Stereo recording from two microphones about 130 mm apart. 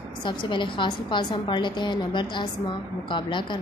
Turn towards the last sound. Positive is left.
turn(degrees=40)  # may be behind; listen again after turning